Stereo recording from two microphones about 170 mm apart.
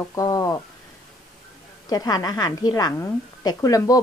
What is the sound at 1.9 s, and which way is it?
A woman's voice, 20° left (ahead or behind).